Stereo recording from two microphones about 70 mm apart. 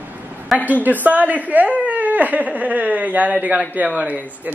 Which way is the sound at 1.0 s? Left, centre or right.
Right.